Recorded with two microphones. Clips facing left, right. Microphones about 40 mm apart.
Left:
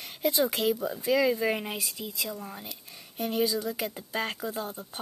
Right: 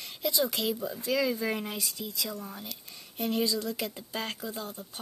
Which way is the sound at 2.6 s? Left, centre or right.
Centre.